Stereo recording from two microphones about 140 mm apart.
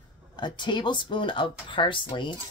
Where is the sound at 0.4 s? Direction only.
35° left (ahead or behind).